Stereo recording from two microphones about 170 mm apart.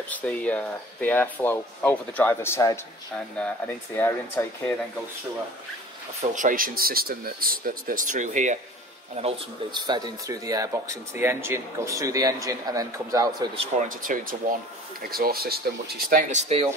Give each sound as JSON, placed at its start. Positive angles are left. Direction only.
{"t": 0.1, "sound": "speech", "side_deg": 5}
{"t": 6.3, "sound": "speech", "side_deg": -50}
{"t": 9.7, "sound": "speech", "side_deg": -25}
{"t": 13.6, "sound": "speech", "side_deg": -50}